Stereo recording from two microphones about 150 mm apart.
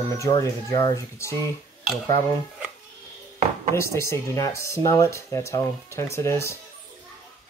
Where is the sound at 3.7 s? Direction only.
20° left (ahead or behind).